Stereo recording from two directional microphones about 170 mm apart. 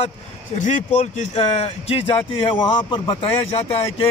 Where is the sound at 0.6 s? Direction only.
45° left (ahead or behind).